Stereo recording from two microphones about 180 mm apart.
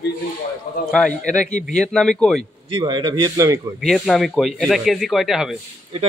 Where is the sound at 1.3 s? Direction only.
5° left (ahead or behind).